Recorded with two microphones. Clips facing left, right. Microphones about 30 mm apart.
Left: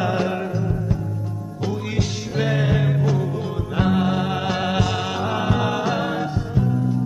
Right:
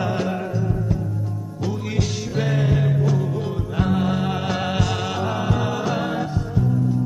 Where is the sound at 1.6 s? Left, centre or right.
Centre.